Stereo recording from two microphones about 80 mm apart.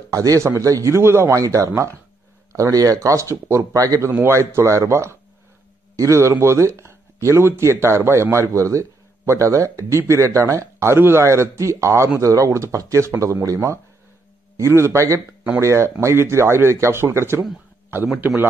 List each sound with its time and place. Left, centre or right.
0.1 s a man's voice: right
4.1 s a man's voice: right